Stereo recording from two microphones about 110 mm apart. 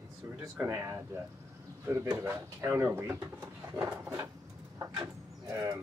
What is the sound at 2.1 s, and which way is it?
Speech, 25° right (ahead or behind).